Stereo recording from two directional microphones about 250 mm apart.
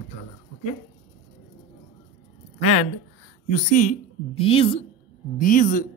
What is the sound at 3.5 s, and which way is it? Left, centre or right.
Speech, left.